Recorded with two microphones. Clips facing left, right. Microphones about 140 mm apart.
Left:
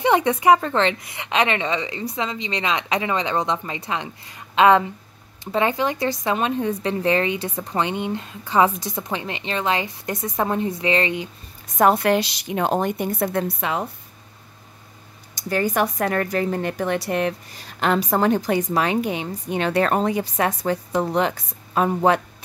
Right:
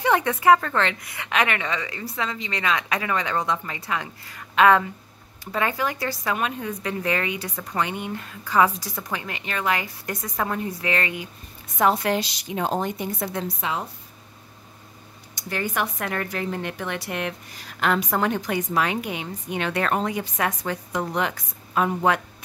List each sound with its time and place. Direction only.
0.0 s speech: 20° left (ahead or behind)
11.8 s a woman's voice: 55° left (ahead or behind)
15.3 s a woman's voice: 40° left (ahead or behind)